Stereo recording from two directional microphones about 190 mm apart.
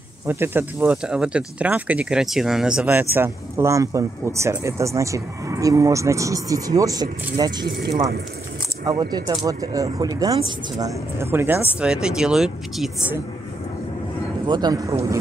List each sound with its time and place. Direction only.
0.3 s speech: 10° right (ahead or behind)
8.8 s speech: 20° right (ahead or behind); by 12.9 s centre (ahead or behind)
14.4 s speech: 20° right (ahead or behind)